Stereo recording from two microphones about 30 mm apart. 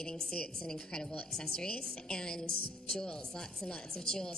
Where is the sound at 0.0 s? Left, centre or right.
Left.